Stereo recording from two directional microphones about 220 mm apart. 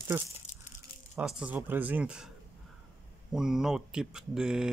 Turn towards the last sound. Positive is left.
turn(degrees=-5)  # may be behind; listen again after turning